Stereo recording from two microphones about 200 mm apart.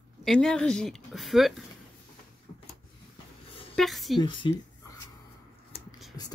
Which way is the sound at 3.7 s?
Centre (ahead or behind).